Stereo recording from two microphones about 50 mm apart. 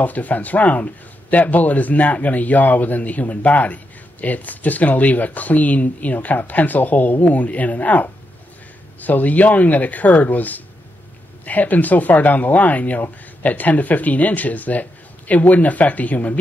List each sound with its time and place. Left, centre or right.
0.0 s speech: left